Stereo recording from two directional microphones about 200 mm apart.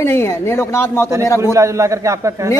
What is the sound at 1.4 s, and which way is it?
A man's voice, 15° right (ahead or behind).